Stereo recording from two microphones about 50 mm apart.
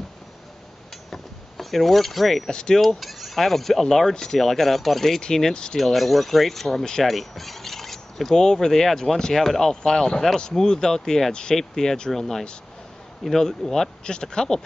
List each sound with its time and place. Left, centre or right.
1.1 s vehicle: centre
2.5 s speech: centre
2.8 s speech: centre
5.8 s speech: centre